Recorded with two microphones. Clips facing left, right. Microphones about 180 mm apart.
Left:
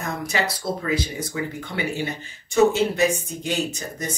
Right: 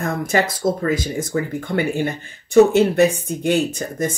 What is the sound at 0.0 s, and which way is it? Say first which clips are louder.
Speech: right 6 dB; 50° right (ahead or behind).